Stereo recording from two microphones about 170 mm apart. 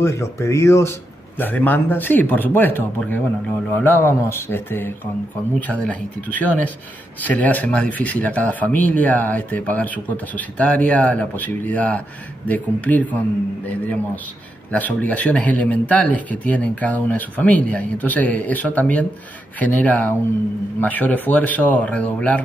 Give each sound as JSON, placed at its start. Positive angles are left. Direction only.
{"t": 0.0, "sound": "speech", "side_deg": 15}